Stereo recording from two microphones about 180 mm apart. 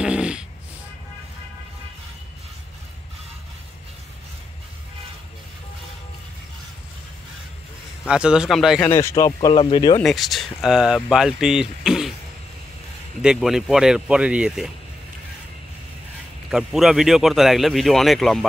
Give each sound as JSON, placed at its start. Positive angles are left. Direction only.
{"t": 0.0, "sound": "snoring", "side_deg": -5}
{"t": 8.1, "sound": "speech", "side_deg": -5}
{"t": 8.8, "sound": "speech", "side_deg": 15}
{"t": 10.0, "sound": "speech", "side_deg": 0}
{"t": 13.2, "sound": "speech", "side_deg": -5}
{"t": 16.4, "sound": "speech", "side_deg": 0}